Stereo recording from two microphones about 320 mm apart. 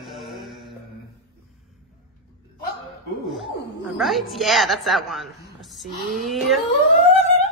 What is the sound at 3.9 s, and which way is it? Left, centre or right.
A woman's voice, centre.